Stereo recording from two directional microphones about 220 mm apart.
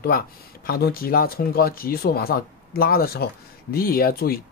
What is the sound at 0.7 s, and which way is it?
Speech, 45° left (ahead or behind).